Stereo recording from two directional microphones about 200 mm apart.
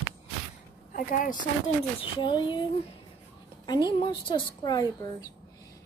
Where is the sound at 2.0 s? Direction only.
25° left (ahead or behind).